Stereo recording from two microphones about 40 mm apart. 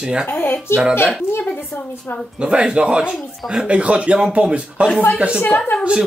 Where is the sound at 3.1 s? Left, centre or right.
Centre.